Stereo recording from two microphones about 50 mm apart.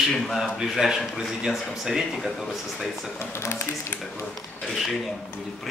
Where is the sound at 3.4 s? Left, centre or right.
Left.